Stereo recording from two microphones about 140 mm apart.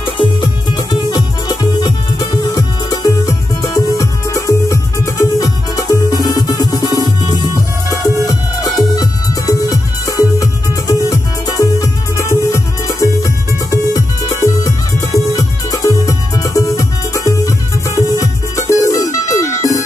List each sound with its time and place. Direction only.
0.7 s music: 30° left (ahead or behind)
8.3 s music: 25° left (ahead or behind)